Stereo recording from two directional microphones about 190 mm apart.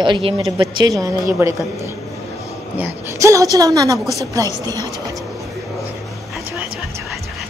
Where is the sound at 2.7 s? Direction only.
10° right (ahead or behind).